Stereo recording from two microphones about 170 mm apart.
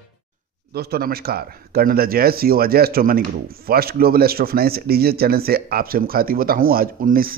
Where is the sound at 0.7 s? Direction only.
65° right (ahead or behind).